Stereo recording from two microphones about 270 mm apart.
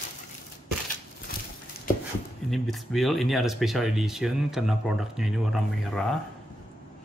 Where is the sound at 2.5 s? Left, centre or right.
Centre.